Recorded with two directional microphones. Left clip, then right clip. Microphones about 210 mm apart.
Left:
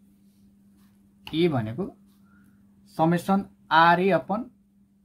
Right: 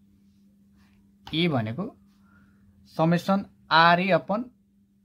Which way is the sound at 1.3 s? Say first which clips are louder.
Left 1 dB; 40° right (ahead or behind).